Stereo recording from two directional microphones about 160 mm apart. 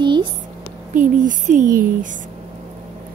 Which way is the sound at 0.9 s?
55° right (ahead or behind).